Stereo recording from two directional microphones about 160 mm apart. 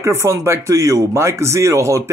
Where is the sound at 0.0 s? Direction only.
20° right (ahead or behind).